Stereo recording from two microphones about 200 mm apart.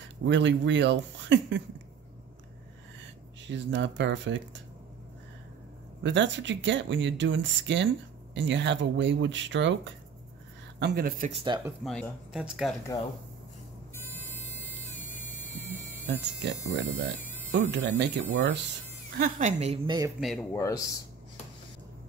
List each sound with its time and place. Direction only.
0.2 s speech: 65° right (ahead or behind)
3.4 s speech: 65° right (ahead or behind)
6.0 s speech: 65° right (ahead or behind)
10.8 s speech: 50° right (ahead or behind)
11.4 s speech: 20° right (ahead or behind)
11.8 s speech: centre (ahead or behind)
14.2 s a sound: 10° left (ahead or behind)
16.4 s speech: 65° right (ahead or behind)
17.2 s a sound: 10° left (ahead or behind)
17.5 s speech: 60° right (ahead or behind)
19.1 s a woman's voice: 40° right (ahead or behind)
20.5 s speech: 15° left (ahead or behind)